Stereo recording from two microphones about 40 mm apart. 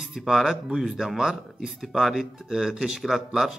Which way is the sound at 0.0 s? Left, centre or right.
Centre.